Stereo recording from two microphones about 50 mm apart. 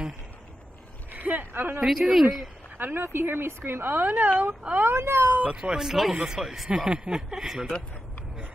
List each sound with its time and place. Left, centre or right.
1.1 s a sound: right
1.8 s a woman's voice: centre
2.8 s a woman's voice: right
5.4 s speech: centre